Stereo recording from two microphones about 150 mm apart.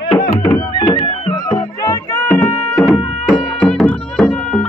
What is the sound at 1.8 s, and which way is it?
Music, 20° left (ahead or behind).